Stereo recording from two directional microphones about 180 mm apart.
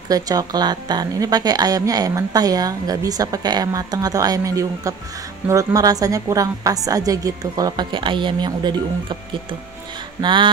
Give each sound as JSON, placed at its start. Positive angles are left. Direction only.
{"t": 0.1, "sound": "a woman's voice", "side_deg": -20}
{"t": 10.2, "sound": "a woman's voice", "side_deg": -25}